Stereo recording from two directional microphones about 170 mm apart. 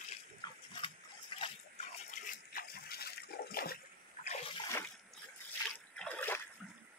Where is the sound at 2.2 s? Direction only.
60° left (ahead or behind).